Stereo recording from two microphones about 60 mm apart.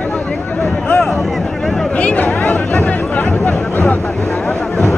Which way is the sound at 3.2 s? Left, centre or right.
Left.